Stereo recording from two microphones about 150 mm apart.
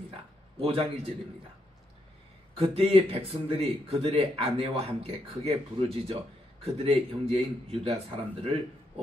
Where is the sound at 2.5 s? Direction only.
40° right (ahead or behind).